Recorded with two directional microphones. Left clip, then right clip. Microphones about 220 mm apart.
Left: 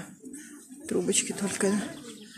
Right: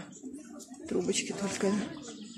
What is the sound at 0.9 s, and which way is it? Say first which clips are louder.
Speech: left 3 dB; 20° left (ahead or behind).